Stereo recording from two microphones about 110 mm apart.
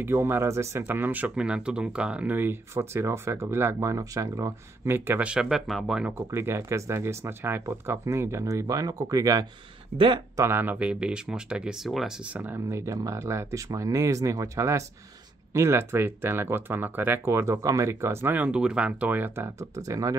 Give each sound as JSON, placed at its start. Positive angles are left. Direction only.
{"t": 0.0, "sound": "speech", "side_deg": -20}
{"t": 5.3, "sound": "speech", "side_deg": -5}
{"t": 6.0, "sound": "speech", "side_deg": -25}
{"t": 9.9, "sound": "speech", "side_deg": -50}
{"t": 10.3, "sound": "speech", "side_deg": -20}
{"t": 12.4, "sound": "speech", "side_deg": -20}